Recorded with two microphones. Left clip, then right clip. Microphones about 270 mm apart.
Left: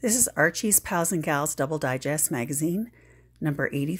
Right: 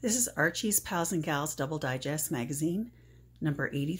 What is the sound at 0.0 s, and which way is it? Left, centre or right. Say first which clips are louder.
Speech: left 6 dB; left.